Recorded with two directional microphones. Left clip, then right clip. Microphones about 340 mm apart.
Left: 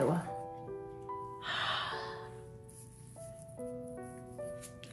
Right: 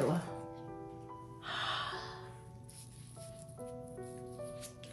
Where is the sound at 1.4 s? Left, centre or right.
Left.